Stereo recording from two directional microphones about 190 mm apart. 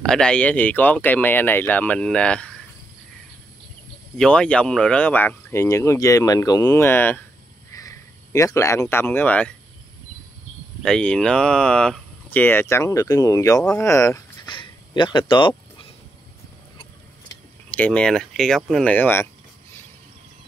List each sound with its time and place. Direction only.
0.0 s speech: 5° left (ahead or behind)
4.2 s speech: 5° left (ahead or behind)
10.8 s speech: 5° left (ahead or behind)
13.6 s speech: 5° left (ahead or behind); by 15.5 s 25° left (ahead or behind)
17.3 s speech: 10° left (ahead or behind)